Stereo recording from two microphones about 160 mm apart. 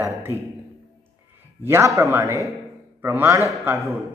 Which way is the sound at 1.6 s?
15° right (ahead or behind).